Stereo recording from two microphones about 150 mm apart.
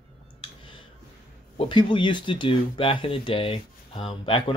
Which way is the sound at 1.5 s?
35° left (ahead or behind).